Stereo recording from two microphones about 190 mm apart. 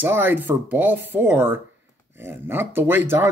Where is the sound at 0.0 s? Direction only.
10° right (ahead or behind).